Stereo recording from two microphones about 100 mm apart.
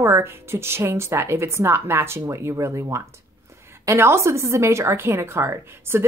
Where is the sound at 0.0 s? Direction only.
25° right (ahead or behind).